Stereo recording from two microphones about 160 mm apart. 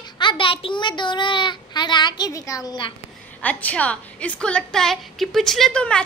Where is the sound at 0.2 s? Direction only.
30° left (ahead or behind).